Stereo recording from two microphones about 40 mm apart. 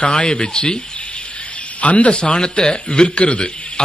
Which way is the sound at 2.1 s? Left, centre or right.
Left.